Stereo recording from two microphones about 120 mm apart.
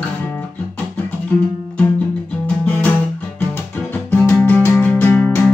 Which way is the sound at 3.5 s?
15° left (ahead or behind).